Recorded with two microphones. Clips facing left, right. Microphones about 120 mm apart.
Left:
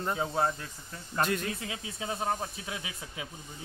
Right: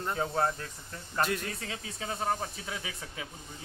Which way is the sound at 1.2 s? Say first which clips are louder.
Left 1 dB; centre (ahead or behind).